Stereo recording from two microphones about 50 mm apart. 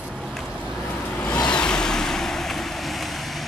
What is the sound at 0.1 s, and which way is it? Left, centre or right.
Vehicle, centre.